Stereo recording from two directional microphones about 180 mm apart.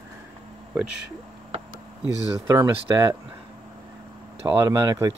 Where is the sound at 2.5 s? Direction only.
15° right (ahead or behind).